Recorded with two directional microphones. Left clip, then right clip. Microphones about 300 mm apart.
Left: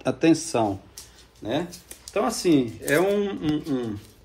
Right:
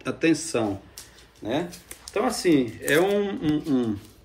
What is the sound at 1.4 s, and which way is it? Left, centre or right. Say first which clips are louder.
A man's voice: even; centre.